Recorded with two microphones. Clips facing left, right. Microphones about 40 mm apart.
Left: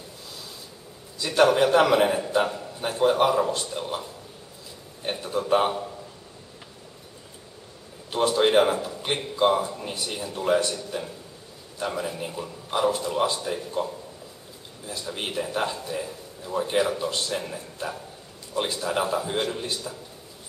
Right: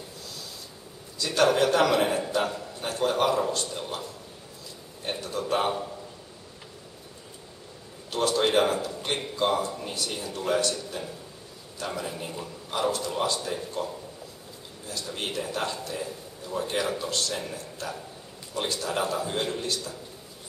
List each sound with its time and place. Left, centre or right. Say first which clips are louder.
1.1 s a man's voice: left 3 dB; centre
5.2 s a man's voice: left 5 dB; centre
5.7 s a man's voice: even; centre
8.1 s a man's voice: left 3 dB; centre
8.9 s a sound: left 2 dB; centre
9.4 s a man's voice: left 5 dB; centre